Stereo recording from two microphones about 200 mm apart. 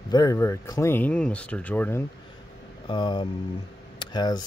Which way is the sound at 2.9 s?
25° left (ahead or behind).